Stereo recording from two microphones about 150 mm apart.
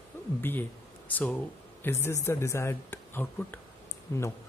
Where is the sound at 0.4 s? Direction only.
15° left (ahead or behind).